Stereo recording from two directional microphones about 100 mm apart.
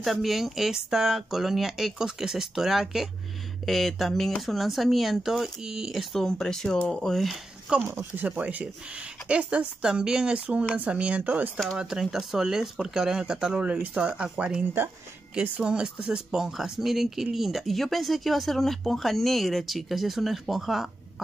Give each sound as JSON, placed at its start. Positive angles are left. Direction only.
{"t": 0.0, "sound": "speech", "side_deg": 0}
{"t": 7.7, "sound": "speech", "side_deg": -20}
{"t": 11.8, "sound": "speech", "side_deg": -5}